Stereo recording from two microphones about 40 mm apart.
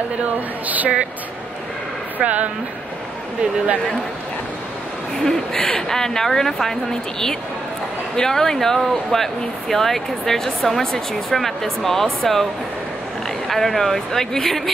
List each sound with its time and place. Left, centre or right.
0.7 s a woman's voice: right
2.1 s speech: right
5.2 s speech: centre
13.5 s speech: centre